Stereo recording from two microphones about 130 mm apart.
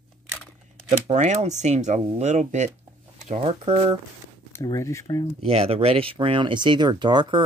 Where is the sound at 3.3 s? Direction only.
50° right (ahead or behind).